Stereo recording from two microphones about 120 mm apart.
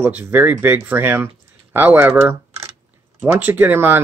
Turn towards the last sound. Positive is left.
turn(degrees=-15)  # may be behind; listen again after turning